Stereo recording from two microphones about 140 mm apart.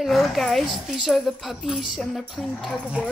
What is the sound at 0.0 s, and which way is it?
Speech, centre (ahead or behind).